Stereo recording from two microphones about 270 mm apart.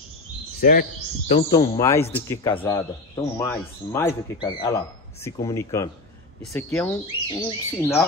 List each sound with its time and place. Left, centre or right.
0.6 s speech: left
1.3 s a man's voice: left